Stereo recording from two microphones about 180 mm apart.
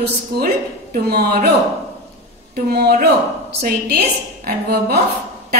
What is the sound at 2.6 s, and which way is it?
A woman's voice, 60° right (ahead or behind).